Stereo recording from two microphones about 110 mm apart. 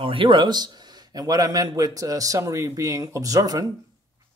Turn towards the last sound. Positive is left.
turn(degrees=-30)  # may be behind; listen again after turning